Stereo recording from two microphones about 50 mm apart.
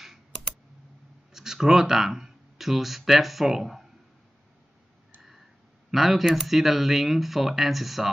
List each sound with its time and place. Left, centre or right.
1.3 s speech: centre
5.9 s speech: centre